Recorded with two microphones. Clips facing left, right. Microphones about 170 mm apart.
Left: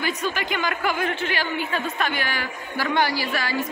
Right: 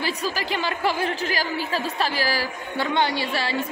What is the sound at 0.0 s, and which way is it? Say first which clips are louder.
Speech: left 1 dB; 35° right (ahead or behind).